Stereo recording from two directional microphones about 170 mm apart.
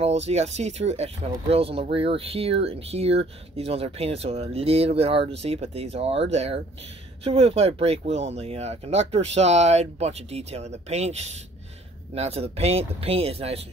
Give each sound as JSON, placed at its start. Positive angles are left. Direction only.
{"t": 0.0, "sound": "speech", "side_deg": -40}